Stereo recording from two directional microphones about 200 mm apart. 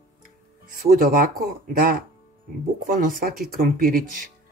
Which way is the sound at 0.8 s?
45° right (ahead or behind).